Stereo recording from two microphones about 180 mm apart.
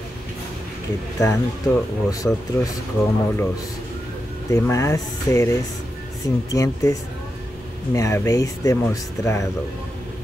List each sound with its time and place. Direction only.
1.2 s speech: 15° left (ahead or behind)
4.5 s speech: 15° left (ahead or behind)
6.5 s speech: 20° left (ahead or behind)